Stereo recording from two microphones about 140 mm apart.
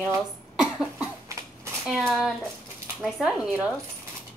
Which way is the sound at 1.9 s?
5° right (ahead or behind).